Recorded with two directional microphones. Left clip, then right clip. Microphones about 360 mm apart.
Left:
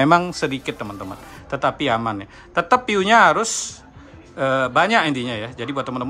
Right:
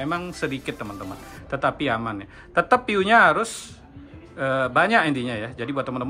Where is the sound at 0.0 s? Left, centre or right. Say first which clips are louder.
Left 11 dB; centre.